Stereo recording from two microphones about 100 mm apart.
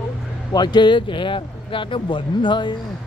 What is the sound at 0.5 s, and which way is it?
Speech, 45° left (ahead or behind).